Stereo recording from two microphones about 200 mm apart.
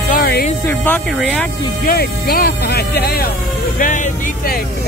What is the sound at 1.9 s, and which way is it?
Speech, 50° left (ahead or behind).